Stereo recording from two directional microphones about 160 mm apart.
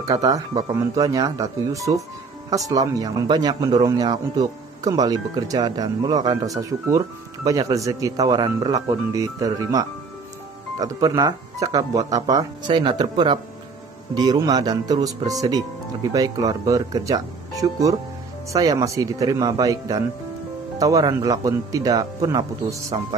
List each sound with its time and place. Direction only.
0.0 s speech: 20° right (ahead or behind)